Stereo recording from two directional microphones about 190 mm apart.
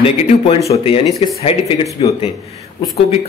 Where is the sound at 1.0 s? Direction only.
Centre (ahead or behind).